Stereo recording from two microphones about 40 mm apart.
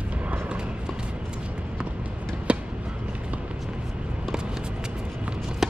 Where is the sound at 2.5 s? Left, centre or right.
Right.